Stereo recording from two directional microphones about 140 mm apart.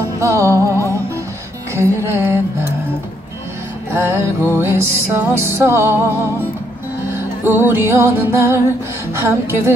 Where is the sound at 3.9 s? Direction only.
15° right (ahead or behind).